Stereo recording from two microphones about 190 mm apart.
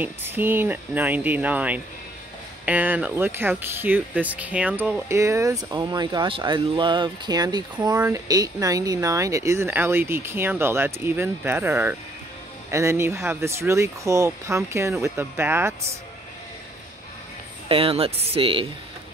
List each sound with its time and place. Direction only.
0.0 s speech: 10° right (ahead or behind)
17.6 s speech: 30° right (ahead or behind)